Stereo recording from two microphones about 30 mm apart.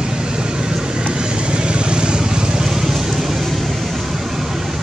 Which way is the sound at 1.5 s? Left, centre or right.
Right.